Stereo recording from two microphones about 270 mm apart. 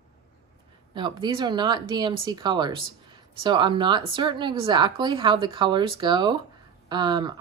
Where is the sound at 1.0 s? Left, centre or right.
Centre.